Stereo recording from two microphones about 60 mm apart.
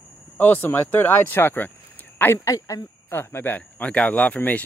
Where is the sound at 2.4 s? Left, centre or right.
Left.